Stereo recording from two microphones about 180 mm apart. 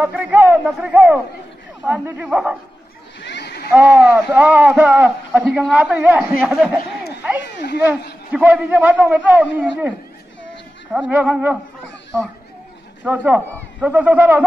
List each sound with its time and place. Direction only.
0.0 s speech: 10° right (ahead or behind)
3.2 s a sound: 70° left (ahead or behind)
3.7 s speech: 10° right (ahead or behind)
8.3 s speech: 10° right (ahead or behind)
13.0 s speech: 10° right (ahead or behind)